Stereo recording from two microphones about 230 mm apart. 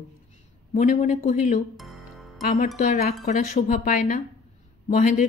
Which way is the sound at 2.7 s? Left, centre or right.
Left.